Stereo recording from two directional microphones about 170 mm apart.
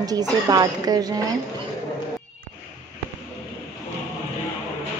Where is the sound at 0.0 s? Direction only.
20° right (ahead or behind).